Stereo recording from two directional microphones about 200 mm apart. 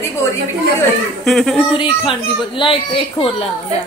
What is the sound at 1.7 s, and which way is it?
Speech, 25° left (ahead or behind).